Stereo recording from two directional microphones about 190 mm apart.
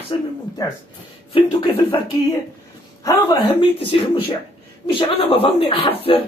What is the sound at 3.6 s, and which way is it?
A woman's voice, 30° left (ahead or behind).